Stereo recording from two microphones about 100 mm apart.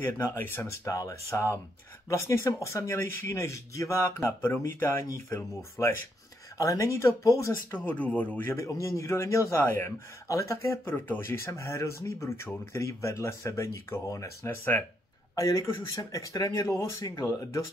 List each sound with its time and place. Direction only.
0.0 s speech: 25° left (ahead or behind)
7.8 s speech: 15° left (ahead or behind)
8.5 s speech: 30° left (ahead or behind)
15.3 s speech: 30° left (ahead or behind)